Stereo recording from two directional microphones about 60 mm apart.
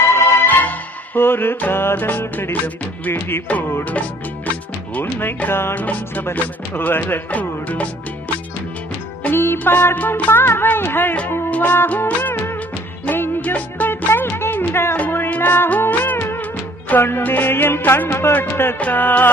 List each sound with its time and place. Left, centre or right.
0.0 s music: left
0.5 s music: left
4.9 s music: left
5.8 s music: left
7.2 s music: left
9.3 s music: left
13.4 s music: left